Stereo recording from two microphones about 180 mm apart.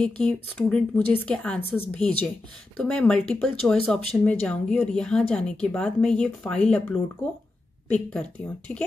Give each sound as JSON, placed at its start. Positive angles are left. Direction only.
{"t": 0.0, "sound": "speech", "side_deg": 5}